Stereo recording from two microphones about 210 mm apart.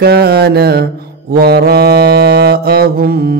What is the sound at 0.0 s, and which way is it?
Mantra, 50° right (ahead or behind).